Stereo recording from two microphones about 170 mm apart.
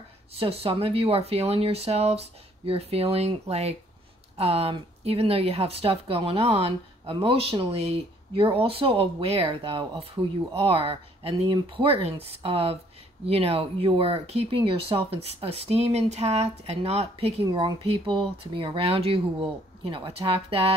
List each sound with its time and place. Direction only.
0.3 s a woman's voice: 35° right (ahead or behind)